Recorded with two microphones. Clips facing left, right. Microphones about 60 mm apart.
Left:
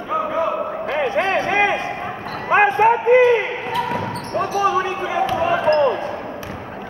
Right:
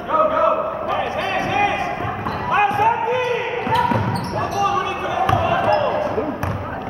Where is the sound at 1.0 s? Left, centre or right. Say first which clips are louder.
Left 3 dB; left.